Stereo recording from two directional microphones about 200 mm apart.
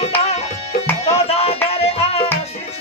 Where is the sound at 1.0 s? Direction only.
30° left (ahead or behind).